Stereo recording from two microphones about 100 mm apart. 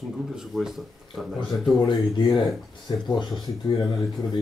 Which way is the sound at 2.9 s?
45° left (ahead or behind).